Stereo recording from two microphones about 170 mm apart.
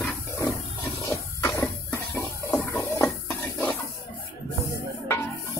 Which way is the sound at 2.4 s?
15° left (ahead or behind).